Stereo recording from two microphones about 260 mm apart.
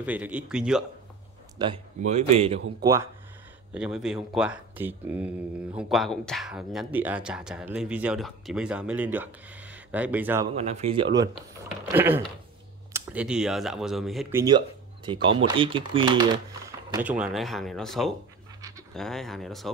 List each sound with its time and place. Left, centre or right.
0.0 s speech: centre
1.6 s speech: right
2.8 s speech: centre
10.5 s speech: right
11.8 s speech: centre
15.0 s speech: centre